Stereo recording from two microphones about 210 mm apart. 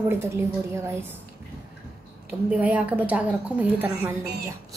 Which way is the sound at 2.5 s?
5° right (ahead or behind).